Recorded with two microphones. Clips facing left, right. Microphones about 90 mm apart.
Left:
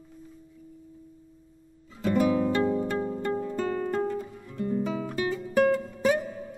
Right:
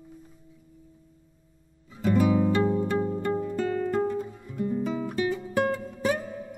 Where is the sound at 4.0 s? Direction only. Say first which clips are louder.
Right 2 dB; 15° right (ahead or behind).